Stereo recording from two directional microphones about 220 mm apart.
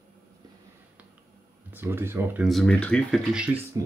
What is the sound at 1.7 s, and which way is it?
Speech, 10° right (ahead or behind).